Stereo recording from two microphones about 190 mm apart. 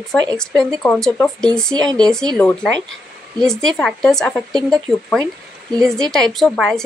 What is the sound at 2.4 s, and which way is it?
Speech, 5° left (ahead or behind).